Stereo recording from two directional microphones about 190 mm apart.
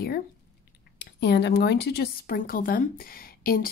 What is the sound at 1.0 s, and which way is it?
A woman's voice, 65° left (ahead or behind).